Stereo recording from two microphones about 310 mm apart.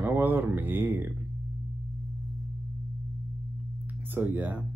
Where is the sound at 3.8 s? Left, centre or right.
Centre.